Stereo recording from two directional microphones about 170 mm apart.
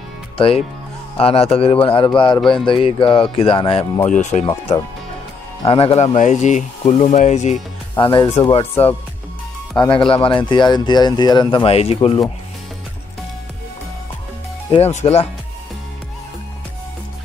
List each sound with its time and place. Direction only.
0.4 s a man's voice: 30° left (ahead or behind)
4.1 s speech: 45° left (ahead or behind)
4.5 s a man's voice: 25° left (ahead or behind)
6.1 s speech: 45° left (ahead or behind)
8.0 s speech: 30° left (ahead or behind)
8.8 s a man's voice: 35° left (ahead or behind)
14.7 s a man's voice: 40° left (ahead or behind)